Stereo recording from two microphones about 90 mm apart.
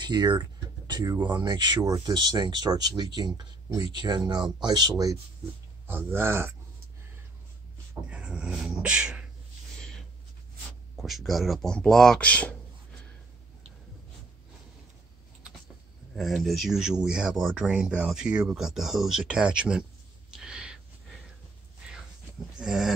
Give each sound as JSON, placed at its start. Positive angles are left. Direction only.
{"t": 0.0, "sound": "a sound", "side_deg": -55}
{"t": 1.2, "sound": "speech", "side_deg": -55}
{"t": 3.6, "sound": "speech", "side_deg": -45}
{"t": 5.9, "sound": "speech", "side_deg": -25}
{"t": 8.1, "sound": "dog", "side_deg": -10}
{"t": 11.0, "sound": "speech", "side_deg": 0}
{"t": 16.2, "sound": "speech", "side_deg": 0}
{"t": 20.3, "sound": "a sound", "side_deg": -10}
{"t": 22.6, "sound": "speech", "side_deg": -5}